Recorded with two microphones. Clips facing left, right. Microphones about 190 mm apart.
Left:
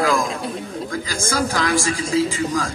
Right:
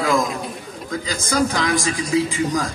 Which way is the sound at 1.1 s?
20° right (ahead or behind).